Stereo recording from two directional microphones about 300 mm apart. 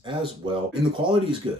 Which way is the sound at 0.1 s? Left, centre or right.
Centre.